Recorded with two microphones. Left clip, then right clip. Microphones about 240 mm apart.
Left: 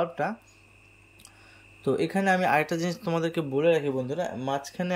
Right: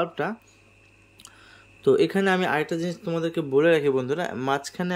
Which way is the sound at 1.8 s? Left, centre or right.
Centre.